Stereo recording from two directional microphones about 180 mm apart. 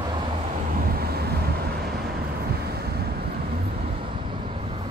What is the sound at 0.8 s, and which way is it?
Vehicle, 60° right (ahead or behind).